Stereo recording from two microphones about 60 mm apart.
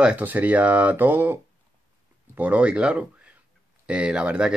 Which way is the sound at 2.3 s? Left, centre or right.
Right.